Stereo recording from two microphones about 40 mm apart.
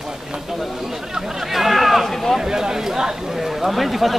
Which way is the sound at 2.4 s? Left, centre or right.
Centre.